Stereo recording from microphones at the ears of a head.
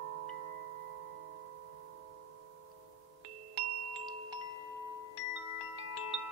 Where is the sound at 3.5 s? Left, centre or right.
Right.